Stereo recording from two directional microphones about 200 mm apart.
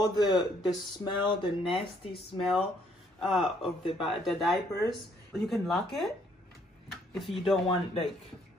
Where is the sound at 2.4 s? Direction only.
Centre (ahead or behind).